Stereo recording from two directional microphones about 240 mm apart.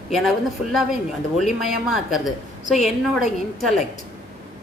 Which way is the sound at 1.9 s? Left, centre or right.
Centre.